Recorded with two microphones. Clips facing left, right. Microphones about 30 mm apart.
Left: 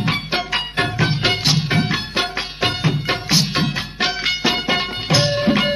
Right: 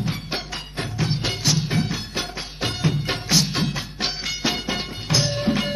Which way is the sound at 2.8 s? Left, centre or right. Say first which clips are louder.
Left 4 dB; left.